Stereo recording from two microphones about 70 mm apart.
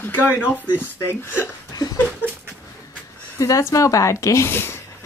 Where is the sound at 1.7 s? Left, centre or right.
Left.